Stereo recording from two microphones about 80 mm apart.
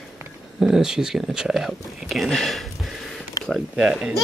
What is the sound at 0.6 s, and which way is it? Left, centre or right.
A child's voice, centre.